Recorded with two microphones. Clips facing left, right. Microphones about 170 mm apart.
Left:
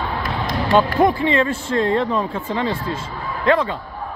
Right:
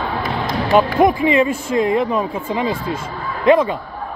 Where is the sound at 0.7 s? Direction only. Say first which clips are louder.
Right 2 dB; 15° right (ahead or behind).